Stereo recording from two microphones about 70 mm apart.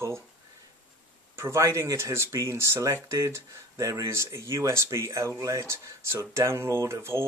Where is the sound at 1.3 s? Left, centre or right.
Right.